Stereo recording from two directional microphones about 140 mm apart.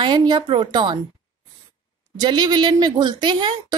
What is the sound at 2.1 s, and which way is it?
A woman's voice, 30° right (ahead or behind).